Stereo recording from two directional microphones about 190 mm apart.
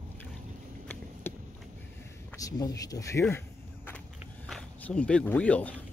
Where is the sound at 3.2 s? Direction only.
10° left (ahead or behind).